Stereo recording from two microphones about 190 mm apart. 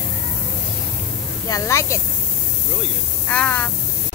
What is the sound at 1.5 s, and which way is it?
Speech, 15° left (ahead or behind).